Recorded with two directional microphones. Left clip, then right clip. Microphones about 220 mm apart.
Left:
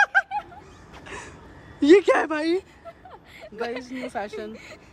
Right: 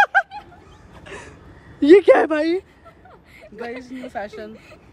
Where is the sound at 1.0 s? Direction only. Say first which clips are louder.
Right 1 dB; centre (ahead or behind).